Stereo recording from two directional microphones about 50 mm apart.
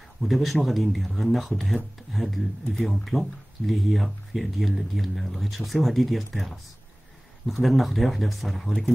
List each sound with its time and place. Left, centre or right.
0.2 s speech: centre